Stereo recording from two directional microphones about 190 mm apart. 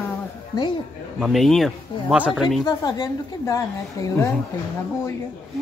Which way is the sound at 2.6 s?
20° left (ahead or behind).